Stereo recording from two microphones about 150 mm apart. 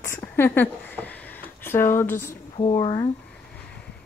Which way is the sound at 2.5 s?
45° left (ahead or behind).